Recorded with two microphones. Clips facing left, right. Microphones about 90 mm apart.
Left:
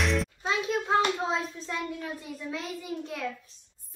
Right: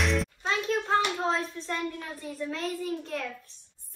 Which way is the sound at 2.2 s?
10° left (ahead or behind).